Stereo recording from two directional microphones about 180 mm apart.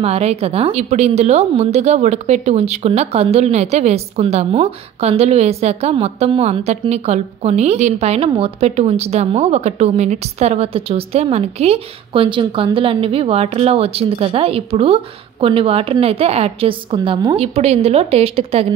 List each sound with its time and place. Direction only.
0.0 s a woman's voice: 35° right (ahead or behind)